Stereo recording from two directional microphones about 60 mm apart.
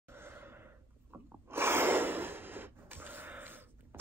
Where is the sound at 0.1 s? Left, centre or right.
Right.